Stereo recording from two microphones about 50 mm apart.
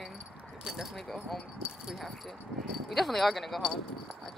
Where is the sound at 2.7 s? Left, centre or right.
Centre.